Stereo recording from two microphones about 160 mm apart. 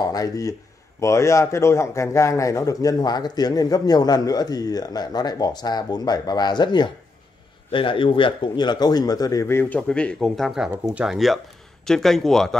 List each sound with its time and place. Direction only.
0.0 s speech: 20° left (ahead or behind); by 12.5 s centre (ahead or behind)